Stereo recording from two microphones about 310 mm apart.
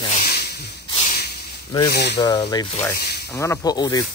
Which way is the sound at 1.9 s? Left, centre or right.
Left.